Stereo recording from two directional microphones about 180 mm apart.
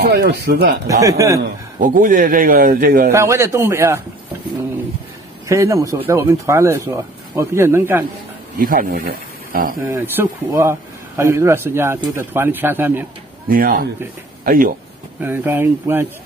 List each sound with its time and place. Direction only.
0.0 s speech: 70° right (ahead or behind)
1.0 s speech: 15° right (ahead or behind)
1.8 s a man's voice: 50° right (ahead or behind)
3.1 s speech: 15° right (ahead or behind)
5.5 s speech: 15° right (ahead or behind)
8.5 s a man's voice: 50° right (ahead or behind)
9.8 s speech: 15° right (ahead or behind)
13.5 s a man's voice: 55° right (ahead or behind)
15.2 s speech: 10° right (ahead or behind)